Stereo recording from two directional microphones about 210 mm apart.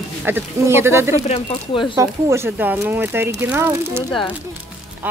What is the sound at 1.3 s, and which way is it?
Speech, 25° left (ahead or behind).